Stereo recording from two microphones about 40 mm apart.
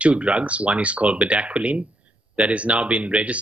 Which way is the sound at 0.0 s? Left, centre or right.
Right.